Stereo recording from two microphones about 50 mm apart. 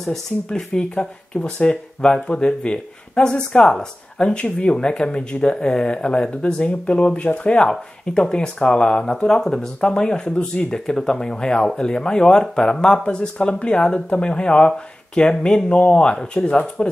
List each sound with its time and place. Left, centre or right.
0.0 s speech: centre